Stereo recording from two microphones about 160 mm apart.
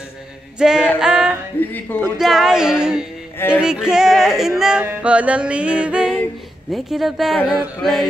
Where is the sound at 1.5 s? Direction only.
10° left (ahead or behind).